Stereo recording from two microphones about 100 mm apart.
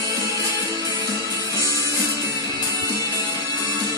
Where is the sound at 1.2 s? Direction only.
35° left (ahead or behind).